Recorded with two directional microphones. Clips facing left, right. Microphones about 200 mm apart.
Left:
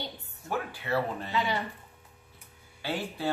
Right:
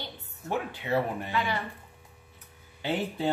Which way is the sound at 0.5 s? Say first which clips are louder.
Right 2 dB; 20° right (ahead or behind).